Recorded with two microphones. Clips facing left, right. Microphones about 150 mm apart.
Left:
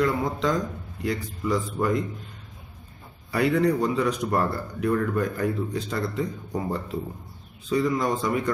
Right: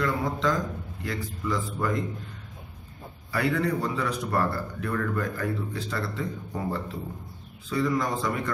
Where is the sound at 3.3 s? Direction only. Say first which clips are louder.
Left 4 dB; 20° left (ahead or behind).